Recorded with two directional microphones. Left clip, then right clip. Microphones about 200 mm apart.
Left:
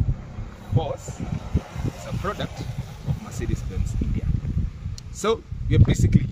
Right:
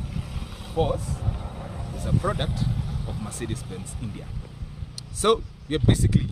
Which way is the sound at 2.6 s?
55° left (ahead or behind).